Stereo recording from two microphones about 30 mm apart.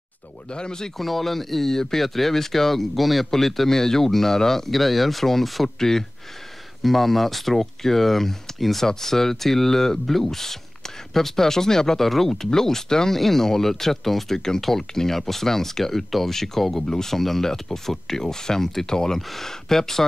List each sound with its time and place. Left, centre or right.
0.5 s speech: left
0.9 s speech: centre
5.8 s speech: centre
6.8 s speech: centre